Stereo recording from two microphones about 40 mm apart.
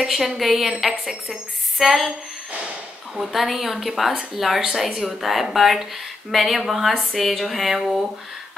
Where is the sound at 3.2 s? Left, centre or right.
Centre.